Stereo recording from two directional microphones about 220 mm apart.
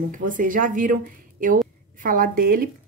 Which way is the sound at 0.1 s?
35° right (ahead or behind).